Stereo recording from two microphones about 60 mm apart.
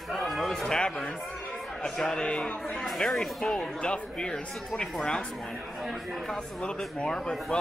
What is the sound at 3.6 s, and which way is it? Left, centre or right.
A man's voice, centre.